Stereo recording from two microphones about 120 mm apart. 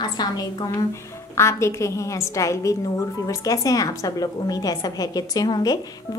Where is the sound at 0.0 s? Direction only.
35° left (ahead or behind).